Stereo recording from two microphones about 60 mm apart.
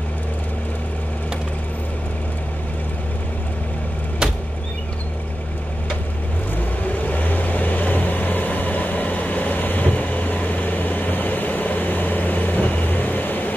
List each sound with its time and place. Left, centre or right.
4.2 s vehicle: centre
6.9 s vehicle: left